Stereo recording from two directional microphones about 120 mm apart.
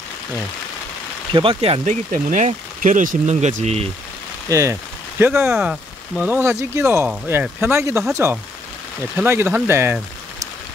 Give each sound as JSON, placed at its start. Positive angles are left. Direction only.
{"t": 1.3, "sound": "speech", "side_deg": -50}
{"t": 1.9, "sound": "speech", "side_deg": -90}
{"t": 4.5, "sound": "speech", "side_deg": -30}
{"t": 5.2, "sound": "speech", "side_deg": -15}